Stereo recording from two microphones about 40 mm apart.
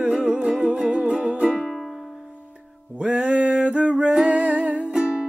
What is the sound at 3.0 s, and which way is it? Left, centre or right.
Music, right.